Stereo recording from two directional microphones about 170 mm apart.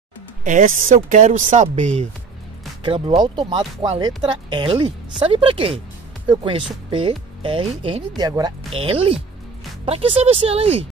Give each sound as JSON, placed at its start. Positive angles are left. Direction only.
{"t": 0.4, "sound": "speech", "side_deg": -50}
{"t": 3.2, "sound": "speech", "side_deg": -25}
{"t": 8.7, "sound": "speech", "side_deg": -35}